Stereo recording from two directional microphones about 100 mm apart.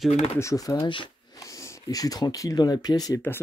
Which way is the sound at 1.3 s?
35° left (ahead or behind).